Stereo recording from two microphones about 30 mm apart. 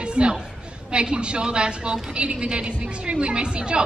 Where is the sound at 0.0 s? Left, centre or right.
Right.